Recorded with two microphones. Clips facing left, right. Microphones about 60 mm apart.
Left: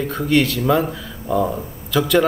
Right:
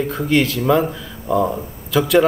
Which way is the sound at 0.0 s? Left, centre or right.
Centre.